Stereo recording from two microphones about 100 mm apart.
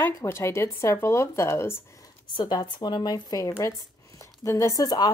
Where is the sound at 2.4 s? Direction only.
45° left (ahead or behind).